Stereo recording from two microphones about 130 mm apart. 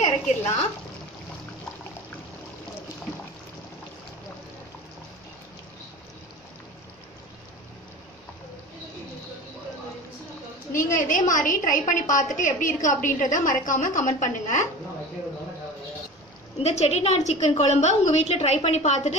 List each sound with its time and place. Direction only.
0.0 s a sound: 60° left (ahead or behind)
10.7 s a woman's voice: 90° left; by 14.7 s 70° left (ahead or behind)
16.6 s a woman's voice: 60° left (ahead or behind)